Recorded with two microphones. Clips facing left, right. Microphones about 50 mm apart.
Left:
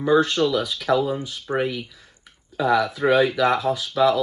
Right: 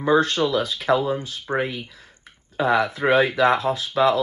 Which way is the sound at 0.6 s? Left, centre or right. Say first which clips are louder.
Right 1 dB; right.